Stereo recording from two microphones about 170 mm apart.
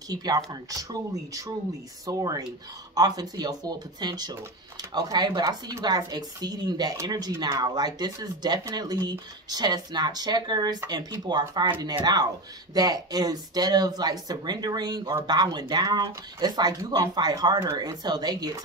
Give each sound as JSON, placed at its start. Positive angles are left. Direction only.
{"t": 0.1, "sound": "speech", "side_deg": -25}